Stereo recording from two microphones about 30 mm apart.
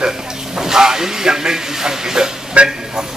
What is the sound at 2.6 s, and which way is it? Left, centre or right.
Speech, right.